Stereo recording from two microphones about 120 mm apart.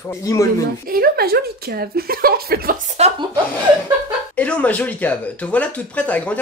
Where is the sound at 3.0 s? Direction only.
65° right (ahead or behind).